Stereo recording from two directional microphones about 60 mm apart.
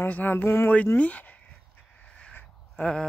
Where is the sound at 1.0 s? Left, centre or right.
Left.